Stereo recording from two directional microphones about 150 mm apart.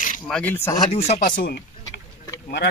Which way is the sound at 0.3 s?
10° left (ahead or behind).